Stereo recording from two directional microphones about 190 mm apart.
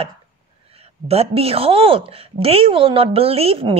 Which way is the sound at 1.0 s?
30° right (ahead or behind).